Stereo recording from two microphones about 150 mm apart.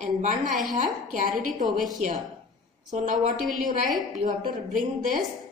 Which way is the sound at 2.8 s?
60° right (ahead or behind).